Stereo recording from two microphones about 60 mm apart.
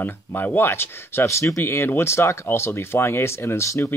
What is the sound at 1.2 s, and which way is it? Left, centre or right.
Speech, left.